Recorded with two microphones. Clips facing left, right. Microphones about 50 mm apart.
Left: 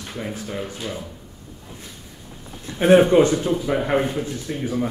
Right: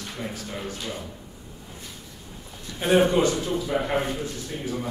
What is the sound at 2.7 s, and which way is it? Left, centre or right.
A man's voice, left.